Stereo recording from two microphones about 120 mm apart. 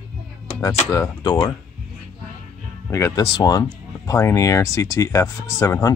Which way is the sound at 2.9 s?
25° left (ahead or behind).